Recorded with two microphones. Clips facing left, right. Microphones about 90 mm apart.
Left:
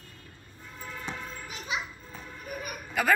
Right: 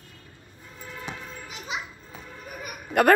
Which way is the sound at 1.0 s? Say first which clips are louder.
Right 1 dB; 10° right (ahead or behind).